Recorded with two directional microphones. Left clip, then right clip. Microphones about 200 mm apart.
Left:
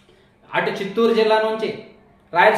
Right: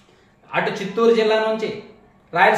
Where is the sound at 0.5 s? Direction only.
15° left (ahead or behind).